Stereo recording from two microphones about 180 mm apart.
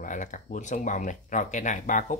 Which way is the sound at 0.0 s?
45° left (ahead or behind).